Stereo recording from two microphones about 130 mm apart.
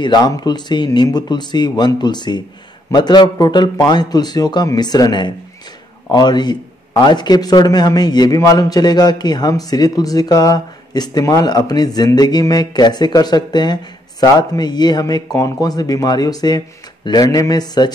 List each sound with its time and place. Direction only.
0.0 s a man's voice: 30° left (ahead or behind)